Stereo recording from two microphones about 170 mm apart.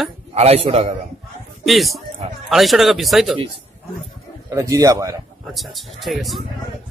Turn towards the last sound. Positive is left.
turn(degrees=0)  # may be behind; listen again after turning